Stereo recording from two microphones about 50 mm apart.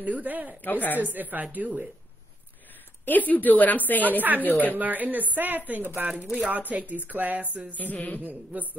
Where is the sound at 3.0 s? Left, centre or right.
Left.